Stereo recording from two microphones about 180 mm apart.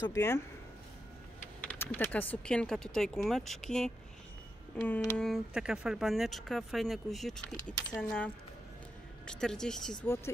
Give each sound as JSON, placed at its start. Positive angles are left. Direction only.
{"t": 0.0, "sound": "speech", "side_deg": 15}
{"t": 1.6, "sound": "speech", "side_deg": 10}
{"t": 10.0, "sound": "speech", "side_deg": 15}